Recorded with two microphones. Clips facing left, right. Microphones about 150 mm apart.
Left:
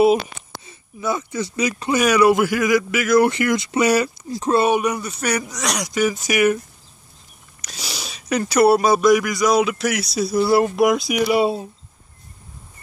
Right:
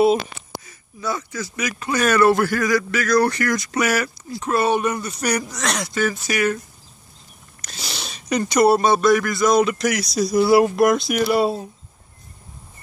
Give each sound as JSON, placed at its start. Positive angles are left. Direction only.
{"t": 0.7, "sound": "speech", "side_deg": 25}
{"t": 2.0, "sound": "speech", "side_deg": 10}
{"t": 4.3, "sound": "speech", "side_deg": 35}
{"t": 4.6, "sound": "speech", "side_deg": 15}
{"t": 7.6, "sound": "speech", "side_deg": 10}
{"t": 10.3, "sound": "speech", "side_deg": -5}